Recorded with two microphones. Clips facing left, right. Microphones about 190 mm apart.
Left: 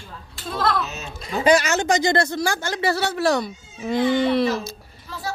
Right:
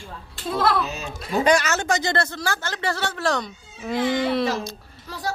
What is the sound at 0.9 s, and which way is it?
A woman's voice, centre (ahead or behind).